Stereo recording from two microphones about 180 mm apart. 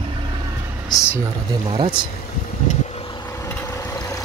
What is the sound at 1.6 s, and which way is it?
Speech, 30° right (ahead or behind).